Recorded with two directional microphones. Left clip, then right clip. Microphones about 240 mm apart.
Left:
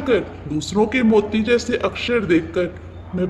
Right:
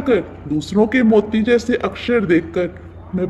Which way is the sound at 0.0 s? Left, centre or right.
Right.